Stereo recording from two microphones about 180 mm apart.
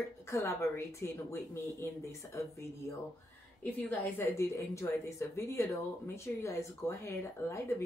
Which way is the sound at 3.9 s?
15° left (ahead or behind).